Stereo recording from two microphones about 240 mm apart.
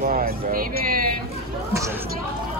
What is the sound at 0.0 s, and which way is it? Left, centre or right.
Speech, right.